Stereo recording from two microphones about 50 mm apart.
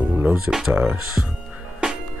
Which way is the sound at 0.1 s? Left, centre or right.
Right.